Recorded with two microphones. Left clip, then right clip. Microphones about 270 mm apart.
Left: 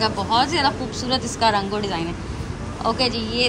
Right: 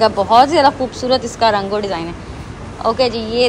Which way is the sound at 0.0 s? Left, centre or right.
Centre.